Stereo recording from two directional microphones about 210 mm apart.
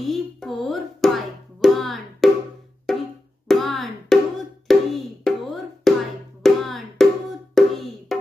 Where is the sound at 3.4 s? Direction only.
Centre (ahead or behind).